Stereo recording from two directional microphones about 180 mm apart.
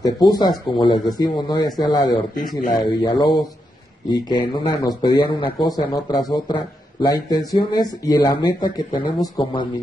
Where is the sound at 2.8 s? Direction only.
25° left (ahead or behind).